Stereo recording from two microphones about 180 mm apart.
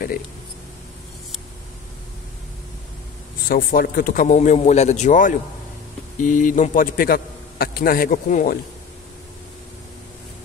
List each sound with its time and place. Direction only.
3.4 s a man's voice: 55° left (ahead or behind)